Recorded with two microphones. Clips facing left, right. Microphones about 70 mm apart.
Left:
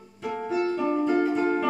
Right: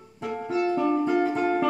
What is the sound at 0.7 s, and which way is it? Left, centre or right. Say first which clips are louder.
Music: right 2 dB; centre.